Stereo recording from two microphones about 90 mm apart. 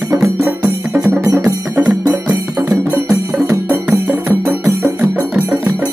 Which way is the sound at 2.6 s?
25° right (ahead or behind).